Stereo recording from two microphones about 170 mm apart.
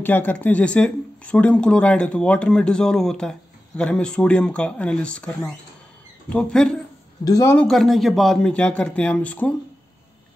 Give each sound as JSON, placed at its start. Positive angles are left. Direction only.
{"t": 0.0, "sound": "speech", "side_deg": 10}
{"t": 7.2, "sound": "a man's voice", "side_deg": 20}
{"t": 7.5, "sound": "speech", "side_deg": 0}